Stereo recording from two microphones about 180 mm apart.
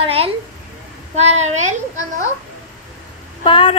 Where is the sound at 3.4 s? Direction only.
30° left (ahead or behind).